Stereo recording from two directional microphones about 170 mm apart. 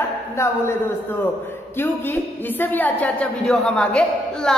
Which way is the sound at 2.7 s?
10° left (ahead or behind).